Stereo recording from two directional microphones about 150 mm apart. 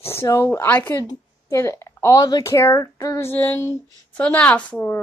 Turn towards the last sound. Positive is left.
turn(degrees=10)  # may be behind; listen again after turning